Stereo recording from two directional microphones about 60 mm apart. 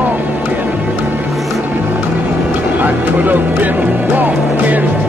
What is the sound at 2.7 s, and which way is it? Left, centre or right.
Speech, right.